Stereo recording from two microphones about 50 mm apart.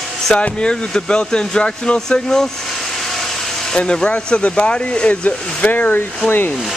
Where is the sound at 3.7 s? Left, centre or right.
Centre; by 6.5 s left.